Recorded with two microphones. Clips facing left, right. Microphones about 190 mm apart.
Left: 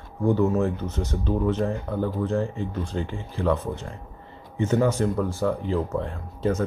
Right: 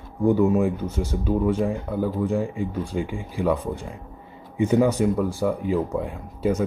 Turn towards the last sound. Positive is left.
turn(degrees=-10)  # may be behind; listen again after turning